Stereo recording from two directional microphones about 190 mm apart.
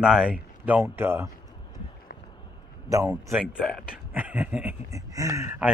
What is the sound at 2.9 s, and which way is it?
Speech, 15° right (ahead or behind).